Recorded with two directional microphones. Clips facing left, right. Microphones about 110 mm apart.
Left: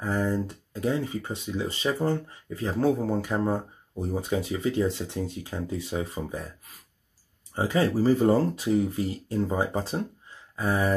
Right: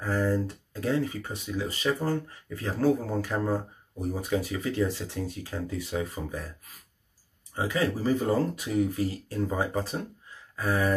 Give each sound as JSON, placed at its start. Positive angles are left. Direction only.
{"t": 0.0, "sound": "speech", "side_deg": 20}
{"t": 7.5, "sound": "speech", "side_deg": 30}
{"t": 10.5, "sound": "a sound", "side_deg": 25}